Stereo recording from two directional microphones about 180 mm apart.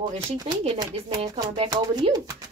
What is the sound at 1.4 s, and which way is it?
Speech, 25° right (ahead or behind).